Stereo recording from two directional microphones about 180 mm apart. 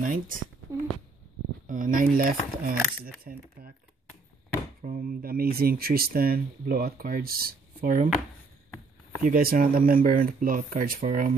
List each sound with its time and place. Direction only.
0.0 s speech: 45° right (ahead or behind)
1.7 s speech: 50° right (ahead or behind)
4.8 s speech: 55° right (ahead or behind)
9.2 s speech: 55° right (ahead or behind)